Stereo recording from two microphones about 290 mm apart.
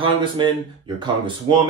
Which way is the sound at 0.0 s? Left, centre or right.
Centre.